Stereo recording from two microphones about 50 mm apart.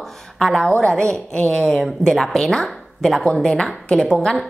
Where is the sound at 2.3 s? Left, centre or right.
Centre.